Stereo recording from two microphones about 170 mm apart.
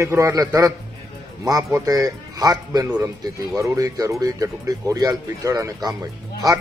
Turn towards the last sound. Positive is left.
turn(degrees=-20)  # may be behind; listen again after turning